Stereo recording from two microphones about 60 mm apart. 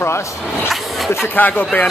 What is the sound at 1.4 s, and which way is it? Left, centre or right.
Speech, left.